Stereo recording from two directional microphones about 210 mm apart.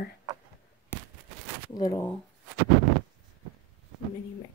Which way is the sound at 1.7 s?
15° left (ahead or behind).